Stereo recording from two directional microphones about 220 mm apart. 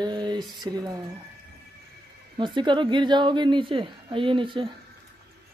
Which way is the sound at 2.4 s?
20° right (ahead or behind).